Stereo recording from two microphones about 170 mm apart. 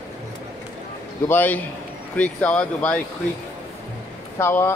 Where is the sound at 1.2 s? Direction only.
10° left (ahead or behind).